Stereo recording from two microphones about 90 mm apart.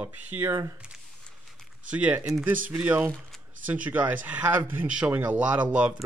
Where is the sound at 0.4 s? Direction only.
35° right (ahead or behind).